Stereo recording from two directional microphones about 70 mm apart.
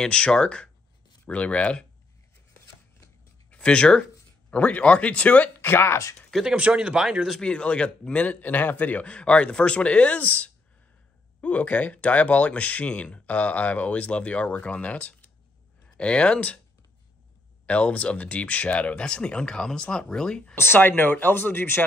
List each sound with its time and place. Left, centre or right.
0.0 s a man's voice: centre
3.4 s speech: centre
5.6 s speech: left
6.5 s speech: centre
7.3 s a man's voice: centre
17.6 s a man's voice: centre
20.5 s speech: left